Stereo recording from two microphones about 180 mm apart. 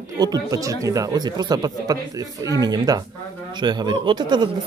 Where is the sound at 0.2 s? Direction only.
20° right (ahead or behind).